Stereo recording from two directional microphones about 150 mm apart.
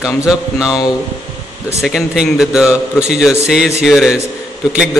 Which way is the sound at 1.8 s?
5° right (ahead or behind).